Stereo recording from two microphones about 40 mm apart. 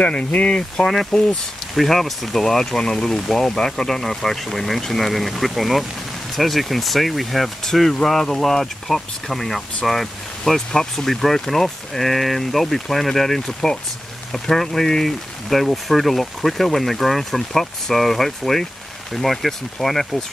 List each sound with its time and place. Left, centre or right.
0.0 s speech: left
0.6 s speech: centre